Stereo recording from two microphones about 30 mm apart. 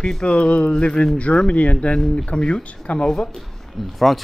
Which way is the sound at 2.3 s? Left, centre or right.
Left.